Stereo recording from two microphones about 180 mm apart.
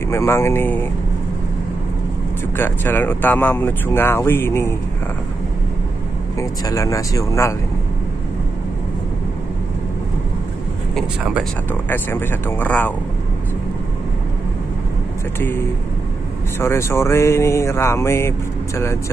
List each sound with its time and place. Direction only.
0.1 s speech: 15° left (ahead or behind)
2.5 s speech: 10° left (ahead or behind)
6.3 s speech: 15° left (ahead or behind)
11.9 s speech: 10° left (ahead or behind)
16.5 s speech: 15° left (ahead or behind)